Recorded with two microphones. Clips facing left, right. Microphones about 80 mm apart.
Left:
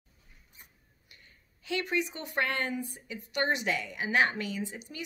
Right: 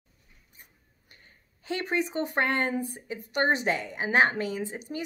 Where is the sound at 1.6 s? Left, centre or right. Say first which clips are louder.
Right 2 dB; right.